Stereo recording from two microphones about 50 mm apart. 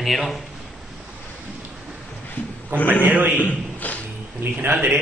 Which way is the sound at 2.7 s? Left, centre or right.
Right.